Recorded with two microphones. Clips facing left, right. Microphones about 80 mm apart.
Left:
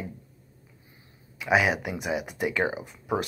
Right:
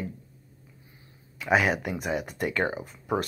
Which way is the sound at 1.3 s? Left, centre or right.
Centre.